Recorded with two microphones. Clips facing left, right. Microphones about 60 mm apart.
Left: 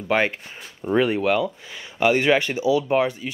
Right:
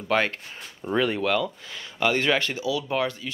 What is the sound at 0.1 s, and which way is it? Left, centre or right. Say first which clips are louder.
Speech: left 2 dB; centre.